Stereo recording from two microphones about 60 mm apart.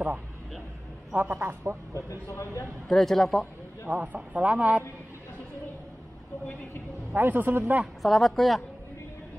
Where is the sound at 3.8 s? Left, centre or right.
Right.